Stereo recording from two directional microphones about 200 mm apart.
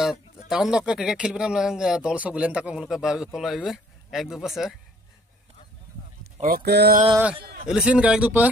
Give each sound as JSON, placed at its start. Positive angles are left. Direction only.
{"t": 0.5, "sound": "speech", "side_deg": -5}
{"t": 6.4, "sound": "speech", "side_deg": -50}
{"t": 7.6, "sound": "speech", "side_deg": -5}